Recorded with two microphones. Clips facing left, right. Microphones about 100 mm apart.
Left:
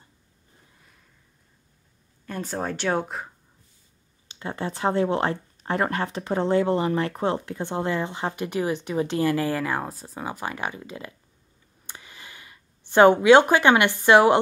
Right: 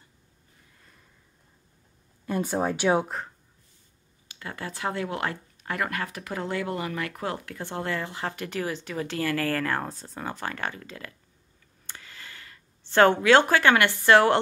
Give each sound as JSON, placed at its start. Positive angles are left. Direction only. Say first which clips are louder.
{"t": 2.2, "sound": "speech", "louder": "right 3 dB", "side_deg": -10}
{"t": 4.3, "sound": "speech", "louder": "left 6 dB", "side_deg": 25}
{"t": 11.8, "sound": "a sound", "louder": "left 1 dB", "side_deg": 15}